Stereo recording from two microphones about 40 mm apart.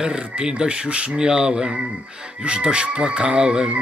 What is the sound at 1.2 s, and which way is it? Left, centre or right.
Speech, centre.